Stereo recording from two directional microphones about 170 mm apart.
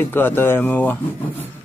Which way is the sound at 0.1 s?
15° left (ahead or behind).